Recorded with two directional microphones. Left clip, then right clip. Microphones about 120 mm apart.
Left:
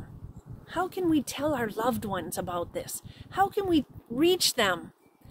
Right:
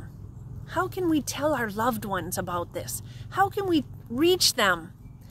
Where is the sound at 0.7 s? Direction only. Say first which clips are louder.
Right 2 dB; 25° left (ahead or behind).